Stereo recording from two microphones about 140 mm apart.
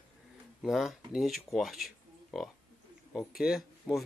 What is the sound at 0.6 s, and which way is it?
Speech, centre (ahead or behind).